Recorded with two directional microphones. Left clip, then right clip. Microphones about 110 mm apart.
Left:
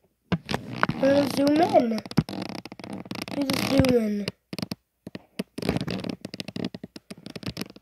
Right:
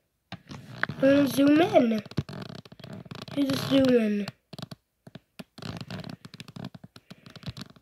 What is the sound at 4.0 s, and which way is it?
Speech, 15° left (ahead or behind).